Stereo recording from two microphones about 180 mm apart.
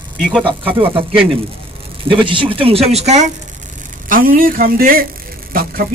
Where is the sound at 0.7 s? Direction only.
30° right (ahead or behind).